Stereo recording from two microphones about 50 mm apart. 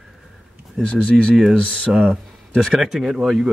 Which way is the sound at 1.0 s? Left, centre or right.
Centre.